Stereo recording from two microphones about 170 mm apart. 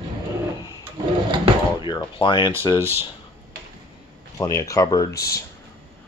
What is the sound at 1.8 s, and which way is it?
Speech, 30° left (ahead or behind).